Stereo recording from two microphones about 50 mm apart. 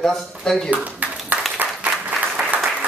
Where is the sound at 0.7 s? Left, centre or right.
Right.